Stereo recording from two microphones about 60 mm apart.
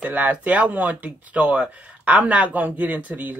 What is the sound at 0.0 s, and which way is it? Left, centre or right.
Speech, right.